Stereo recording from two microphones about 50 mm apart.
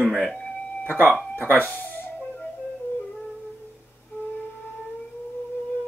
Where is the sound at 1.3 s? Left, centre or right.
Left.